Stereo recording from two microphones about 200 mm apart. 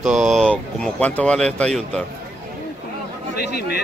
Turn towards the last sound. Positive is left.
turn(degrees=55)  # may be behind; listen again after turning